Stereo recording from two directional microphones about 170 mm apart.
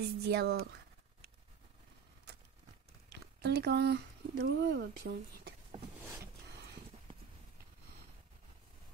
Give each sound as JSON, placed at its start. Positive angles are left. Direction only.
{"t": 0.2, "sound": "speech", "side_deg": -75}
{"t": 3.1, "sound": "speech", "side_deg": -80}